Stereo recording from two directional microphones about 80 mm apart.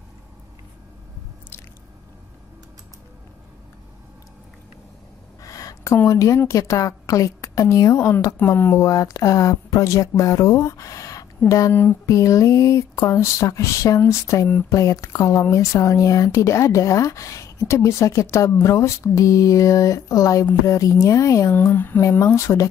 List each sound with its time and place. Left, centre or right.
5.4 s a sound: left
6.0 s a woman's voice: left
8.4 s speech: left
8.7 s speech: left
11.7 s speech: left
12.1 s a woman's voice: left
21.5 s speech: left
22.2 s speech: left